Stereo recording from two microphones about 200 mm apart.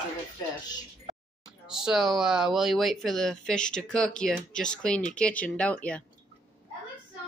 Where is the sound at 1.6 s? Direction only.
5° right (ahead or behind).